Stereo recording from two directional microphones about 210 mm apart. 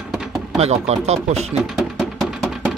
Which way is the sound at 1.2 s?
30° right (ahead or behind).